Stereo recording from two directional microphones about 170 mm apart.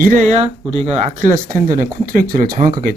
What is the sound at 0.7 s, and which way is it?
Speech, 40° right (ahead or behind).